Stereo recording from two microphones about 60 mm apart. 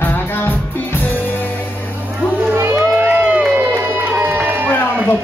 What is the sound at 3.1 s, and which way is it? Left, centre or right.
Run, right.